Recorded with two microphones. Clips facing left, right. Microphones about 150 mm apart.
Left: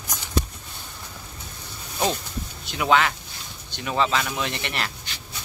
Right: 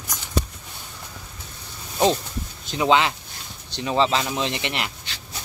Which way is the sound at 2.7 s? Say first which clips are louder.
Right 2 dB; 20° right (ahead or behind).